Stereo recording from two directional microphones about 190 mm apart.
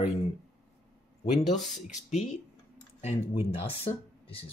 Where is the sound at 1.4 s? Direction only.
Centre (ahead or behind).